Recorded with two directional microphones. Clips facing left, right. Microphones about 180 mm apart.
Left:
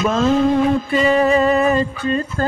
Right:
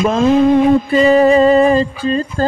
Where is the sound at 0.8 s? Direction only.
35° right (ahead or behind).